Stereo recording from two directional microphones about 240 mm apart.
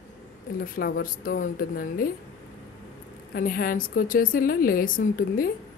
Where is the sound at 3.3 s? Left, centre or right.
Left.